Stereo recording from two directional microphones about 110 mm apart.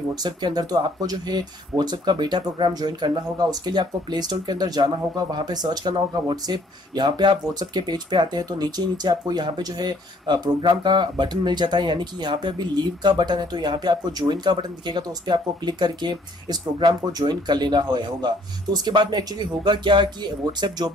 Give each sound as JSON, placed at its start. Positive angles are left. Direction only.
{"t": 0.1, "sound": "speech", "side_deg": -40}